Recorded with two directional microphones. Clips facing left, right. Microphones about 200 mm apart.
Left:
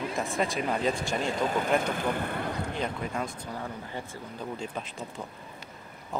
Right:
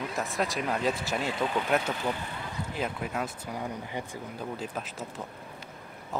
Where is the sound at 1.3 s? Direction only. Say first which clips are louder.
Left 2 dB; 45° left (ahead or behind).